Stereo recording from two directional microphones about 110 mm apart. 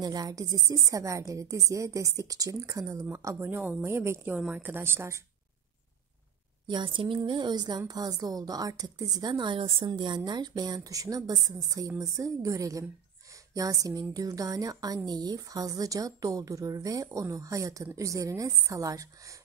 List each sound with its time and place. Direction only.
0.0 s a woman's voice: 35° right (ahead or behind)
6.7 s a woman's voice: 45° right (ahead or behind)